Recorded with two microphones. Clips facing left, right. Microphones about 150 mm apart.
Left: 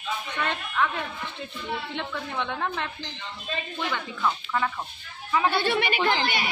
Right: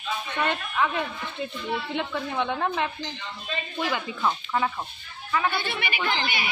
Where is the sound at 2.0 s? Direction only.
5° right (ahead or behind).